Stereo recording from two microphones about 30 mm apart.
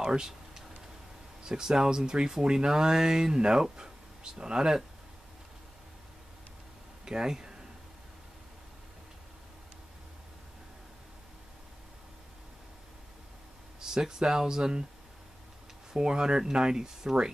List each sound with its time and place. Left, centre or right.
0.0 s speech: right
1.4 s speech: right
7.1 s speech: right
13.7 s speech: centre
15.9 s speech: right